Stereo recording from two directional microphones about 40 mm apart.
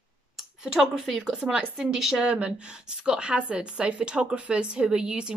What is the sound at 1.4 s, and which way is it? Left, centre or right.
Speech, centre.